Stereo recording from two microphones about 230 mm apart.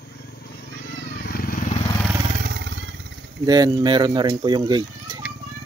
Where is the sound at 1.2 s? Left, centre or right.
Left.